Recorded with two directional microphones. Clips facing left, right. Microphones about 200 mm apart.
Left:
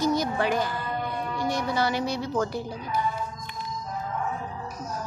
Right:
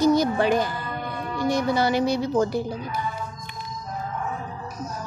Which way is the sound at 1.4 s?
15° right (ahead or behind).